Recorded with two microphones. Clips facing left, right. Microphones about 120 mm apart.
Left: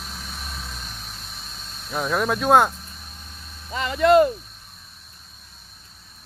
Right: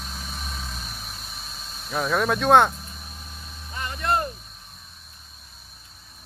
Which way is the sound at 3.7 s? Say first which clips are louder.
Left 10 dB; 90° left.